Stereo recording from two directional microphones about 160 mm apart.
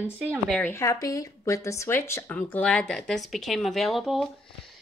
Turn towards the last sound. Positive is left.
turn(degrees=0)  # may be behind; listen again after turning